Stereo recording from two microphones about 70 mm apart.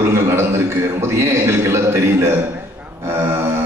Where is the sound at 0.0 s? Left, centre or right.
Right.